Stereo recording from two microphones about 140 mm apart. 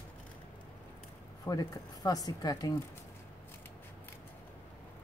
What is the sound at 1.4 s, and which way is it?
Speech, 25° left (ahead or behind).